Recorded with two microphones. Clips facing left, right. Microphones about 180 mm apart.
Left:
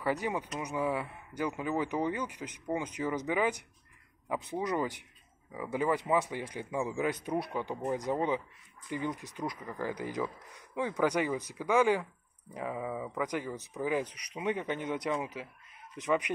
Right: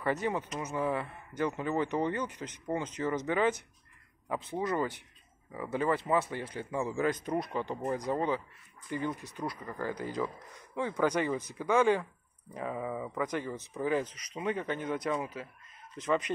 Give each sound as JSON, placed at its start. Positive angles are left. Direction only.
{"t": 0.0, "sound": "speech", "side_deg": 10}